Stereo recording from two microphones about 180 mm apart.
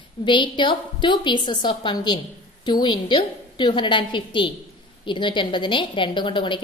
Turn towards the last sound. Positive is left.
turn(degrees=25)  # may be behind; listen again after turning